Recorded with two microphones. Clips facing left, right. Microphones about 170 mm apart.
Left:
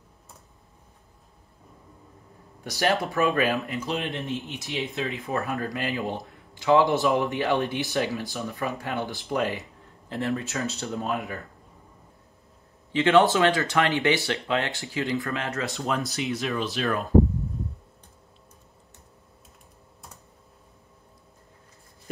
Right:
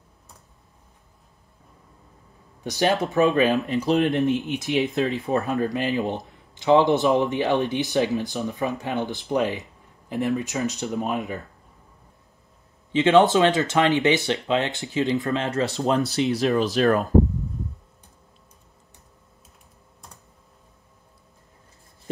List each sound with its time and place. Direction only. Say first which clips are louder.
2.6 s speech: right 3 dB; 20° right (ahead or behind)
3.6 s speech: right 9 dB; 35° right (ahead or behind)
5.2 s speech: right 5 dB; 35° right (ahead or behind)
5.5 s speech: right 5 dB; 20° right (ahead or behind)
12.9 s speech: right 3 dB; 20° right (ahead or behind); by 17.1 s 40° right (ahead or behind)